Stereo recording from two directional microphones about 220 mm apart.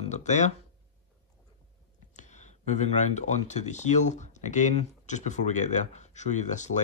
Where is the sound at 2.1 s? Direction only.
35° left (ahead or behind).